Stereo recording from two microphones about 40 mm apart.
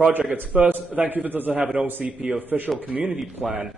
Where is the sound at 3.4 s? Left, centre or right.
Right.